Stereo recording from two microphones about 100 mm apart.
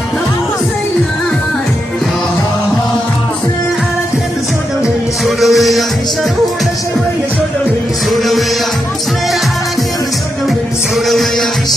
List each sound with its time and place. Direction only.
5.2 s music: centre (ahead or behind)
8.1 s music: centre (ahead or behind)